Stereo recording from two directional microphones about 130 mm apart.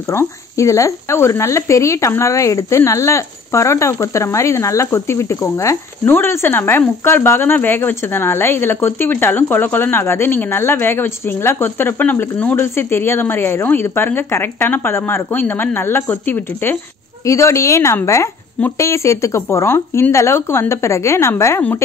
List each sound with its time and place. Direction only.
0.1 s speech: 20° left (ahead or behind)